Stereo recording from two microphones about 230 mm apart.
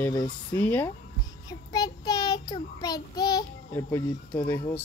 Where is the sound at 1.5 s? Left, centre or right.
Centre.